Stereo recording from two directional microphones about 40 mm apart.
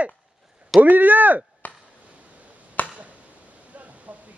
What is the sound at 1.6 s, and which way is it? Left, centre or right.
Chop, left.